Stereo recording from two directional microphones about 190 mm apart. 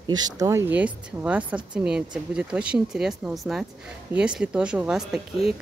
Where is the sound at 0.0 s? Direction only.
20° right (ahead or behind).